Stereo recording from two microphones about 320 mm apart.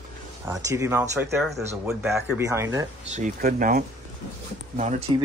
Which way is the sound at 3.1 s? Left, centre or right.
Right.